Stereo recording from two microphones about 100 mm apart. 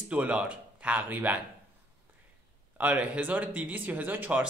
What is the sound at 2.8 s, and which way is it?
Speech, 15° right (ahead or behind).